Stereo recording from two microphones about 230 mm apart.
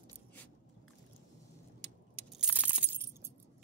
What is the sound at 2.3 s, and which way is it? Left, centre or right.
Coin, centre.